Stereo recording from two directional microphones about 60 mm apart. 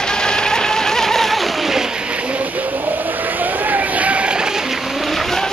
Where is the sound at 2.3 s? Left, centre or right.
Right.